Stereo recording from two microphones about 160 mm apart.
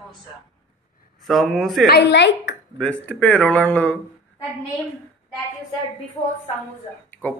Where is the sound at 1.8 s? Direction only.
85° left.